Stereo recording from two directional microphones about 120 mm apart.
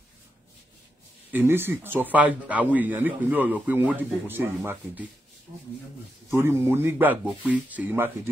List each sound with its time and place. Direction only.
1.3 s speech: 20° right (ahead or behind)
6.3 s speech: 20° right (ahead or behind)